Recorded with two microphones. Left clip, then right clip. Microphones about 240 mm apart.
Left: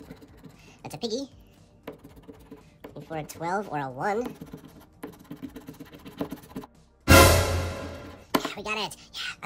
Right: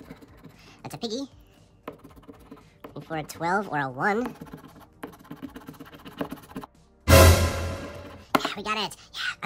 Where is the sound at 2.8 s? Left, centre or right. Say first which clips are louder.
Right 2 dB; centre.